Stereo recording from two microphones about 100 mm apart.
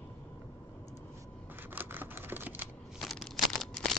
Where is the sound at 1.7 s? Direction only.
20° right (ahead or behind).